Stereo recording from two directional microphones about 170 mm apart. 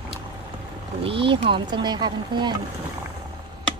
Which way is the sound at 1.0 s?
30° right (ahead or behind).